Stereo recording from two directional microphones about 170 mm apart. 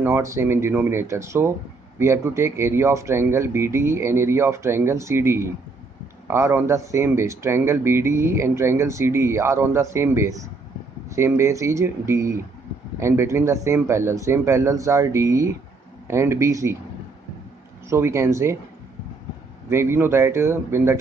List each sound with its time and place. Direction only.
0.0 s speech: 15° right (ahead or behind)
17.8 s speech: 15° right (ahead or behind)
19.7 s speech: 15° right (ahead or behind)